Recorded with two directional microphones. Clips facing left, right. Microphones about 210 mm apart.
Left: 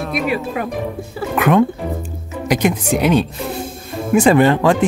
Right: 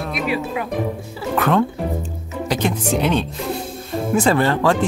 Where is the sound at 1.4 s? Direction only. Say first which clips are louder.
Left 4 dB; 15° left (ahead or behind).